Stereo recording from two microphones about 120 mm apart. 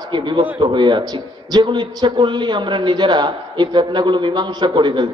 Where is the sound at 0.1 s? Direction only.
40° right (ahead or behind).